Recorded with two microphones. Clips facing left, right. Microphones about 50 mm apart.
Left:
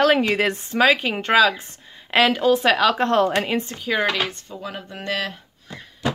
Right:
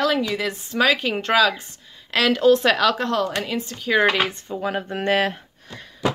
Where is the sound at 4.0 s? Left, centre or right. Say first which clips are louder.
Right 5 dB; centre.